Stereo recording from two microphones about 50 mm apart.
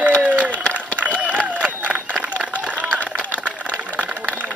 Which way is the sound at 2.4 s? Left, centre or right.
Right.